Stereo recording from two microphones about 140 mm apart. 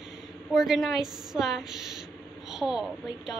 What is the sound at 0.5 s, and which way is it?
A woman's voice, centre (ahead or behind).